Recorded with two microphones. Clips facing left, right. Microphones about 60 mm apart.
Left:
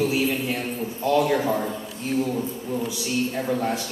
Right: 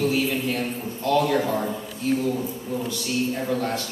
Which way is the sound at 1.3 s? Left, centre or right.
Centre.